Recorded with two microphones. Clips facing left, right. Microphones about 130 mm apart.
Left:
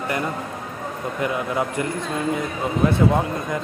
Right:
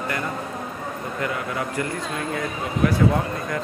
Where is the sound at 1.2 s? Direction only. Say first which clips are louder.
Left 4 dB; 20° left (ahead or behind).